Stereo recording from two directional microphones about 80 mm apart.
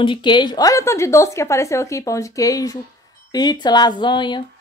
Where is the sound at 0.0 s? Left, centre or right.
Left.